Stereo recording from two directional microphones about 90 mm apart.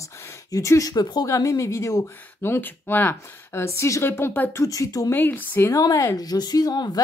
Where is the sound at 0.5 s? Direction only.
35° left (ahead or behind).